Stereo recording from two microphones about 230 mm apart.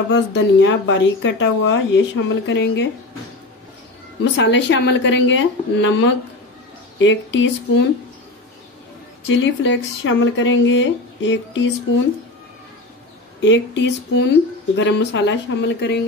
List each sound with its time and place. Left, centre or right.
0.1 s speech: left
4.2 s speech: left
9.2 s speech: left
13.4 s speech: left